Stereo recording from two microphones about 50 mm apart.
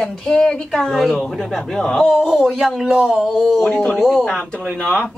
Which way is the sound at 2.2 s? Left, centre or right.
Centre.